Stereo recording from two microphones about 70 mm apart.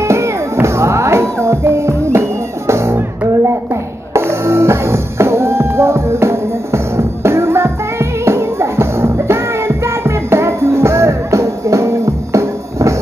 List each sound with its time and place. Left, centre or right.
0.0 s music: right
4.1 s music: right